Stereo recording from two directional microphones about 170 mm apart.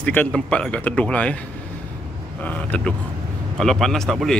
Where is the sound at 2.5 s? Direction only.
10° left (ahead or behind).